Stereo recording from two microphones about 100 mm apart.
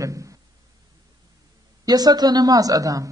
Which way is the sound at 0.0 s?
35° right (ahead or behind).